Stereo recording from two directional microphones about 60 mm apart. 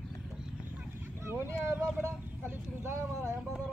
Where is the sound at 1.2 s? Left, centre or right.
Right.